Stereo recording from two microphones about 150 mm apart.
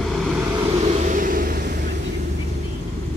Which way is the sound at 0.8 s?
50° right (ahead or behind).